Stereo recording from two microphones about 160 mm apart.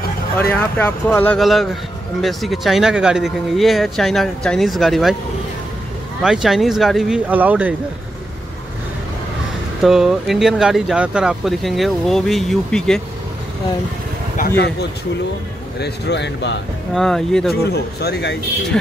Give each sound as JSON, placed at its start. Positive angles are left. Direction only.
{"t": 0.4, "sound": "speech", "side_deg": 10}
{"t": 1.4, "sound": "speech", "side_deg": 0}
{"t": 6.2, "sound": "speech", "side_deg": -5}
{"t": 9.8, "sound": "speech", "side_deg": 0}
{"t": 15.8, "sound": "speech", "side_deg": 90}
{"t": 16.9, "sound": "speech", "side_deg": 5}
{"t": 17.6, "sound": "speech", "side_deg": 90}